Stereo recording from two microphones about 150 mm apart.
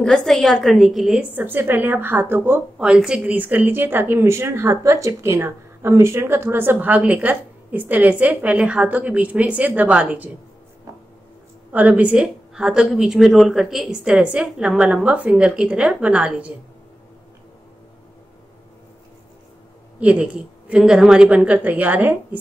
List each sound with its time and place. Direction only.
0.0 s a woman's voice: 5° left (ahead or behind)
1.3 s a woman's voice: 15° right (ahead or behind)
11.7 s a woman's voice: 10° right (ahead or behind)
20.0 s a woman's voice: 10° right (ahead or behind)